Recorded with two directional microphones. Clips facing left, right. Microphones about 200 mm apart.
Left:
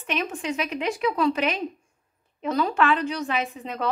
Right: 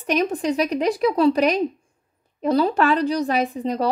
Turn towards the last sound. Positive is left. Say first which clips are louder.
# right 7 dB
turn(degrees=-35)  # may be behind; listen again after turning